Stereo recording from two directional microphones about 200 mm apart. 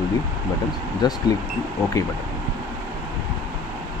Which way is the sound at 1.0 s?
20° left (ahead or behind).